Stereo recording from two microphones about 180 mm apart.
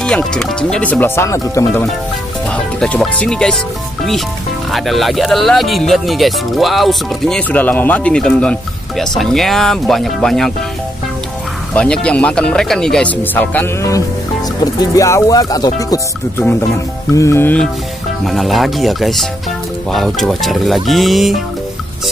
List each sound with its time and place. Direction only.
0.0 s speech: 5° left (ahead or behind)
11.7 s speech: 5° left (ahead or behind)
18.2 s speech: centre (ahead or behind)